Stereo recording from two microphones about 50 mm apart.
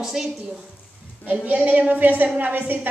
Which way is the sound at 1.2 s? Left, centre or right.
Right.